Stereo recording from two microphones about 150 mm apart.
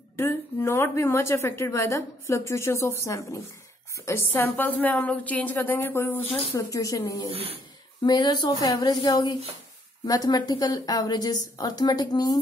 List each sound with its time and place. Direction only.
0.1 s a woman's voice: 15° left (ahead or behind)